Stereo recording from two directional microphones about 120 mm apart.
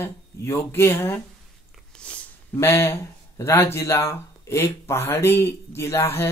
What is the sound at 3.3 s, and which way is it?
Speech, 20° left (ahead or behind).